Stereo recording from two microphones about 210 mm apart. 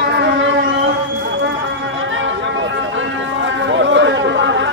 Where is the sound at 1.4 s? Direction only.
60° right (ahead or behind).